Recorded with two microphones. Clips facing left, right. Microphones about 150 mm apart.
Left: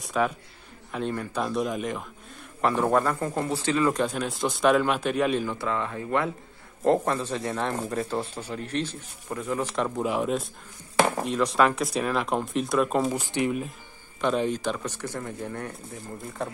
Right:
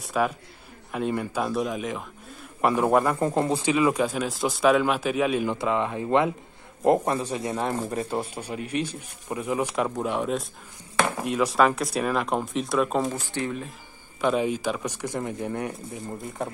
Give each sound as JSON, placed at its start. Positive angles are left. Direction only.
{"t": 0.0, "sound": "speech", "side_deg": 0}
{"t": 2.6, "sound": "speech", "side_deg": -10}
{"t": 3.2, "sound": "speech", "side_deg": -25}
{"t": 5.4, "sound": "speech", "side_deg": -20}
{"t": 10.0, "sound": "speech", "side_deg": 0}
{"t": 13.1, "sound": "speech", "side_deg": 15}
{"t": 14.2, "sound": "speech", "side_deg": -5}